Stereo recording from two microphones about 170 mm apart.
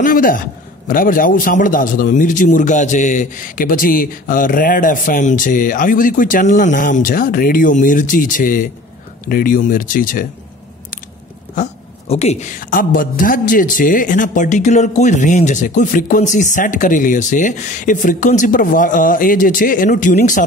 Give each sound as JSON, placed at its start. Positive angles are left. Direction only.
{"t": 0.0, "sound": "a man's voice", "side_deg": 55}
{"t": 11.5, "sound": "a woman's voice", "side_deg": 40}